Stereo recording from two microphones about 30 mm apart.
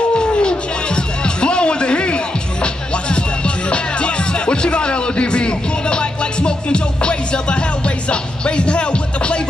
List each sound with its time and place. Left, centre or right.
1.2 s music: left